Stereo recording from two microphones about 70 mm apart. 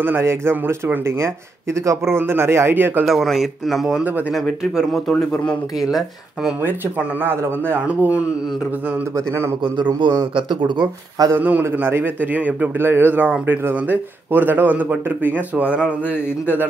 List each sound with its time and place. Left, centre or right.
0.0 s speech: right
3.1 s speech: centre
4.0 s a man's voice: right
4.3 s speech: centre
5.1 s speech: centre
6.6 s a man's voice: right
7.8 s a man's voice: right
9.8 s a man's voice: right
11.3 s a man's voice: right